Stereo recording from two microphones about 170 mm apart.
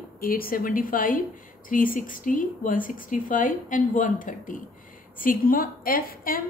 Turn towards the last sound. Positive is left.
turn(degrees=60)  # may be behind; listen again after turning